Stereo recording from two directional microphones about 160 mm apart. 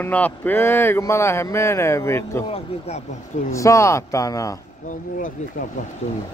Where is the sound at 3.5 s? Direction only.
20° left (ahead or behind).